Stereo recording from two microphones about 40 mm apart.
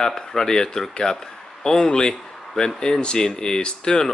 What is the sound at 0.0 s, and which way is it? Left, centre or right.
Speech, centre.